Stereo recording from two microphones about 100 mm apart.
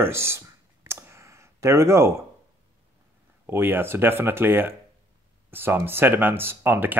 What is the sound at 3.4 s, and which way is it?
Speech, 20° right (ahead or behind).